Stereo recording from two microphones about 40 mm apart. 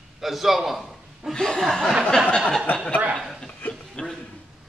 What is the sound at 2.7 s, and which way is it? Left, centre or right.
Speech, left.